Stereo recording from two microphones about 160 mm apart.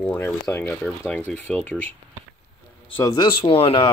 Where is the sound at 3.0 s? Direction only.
25° left (ahead or behind).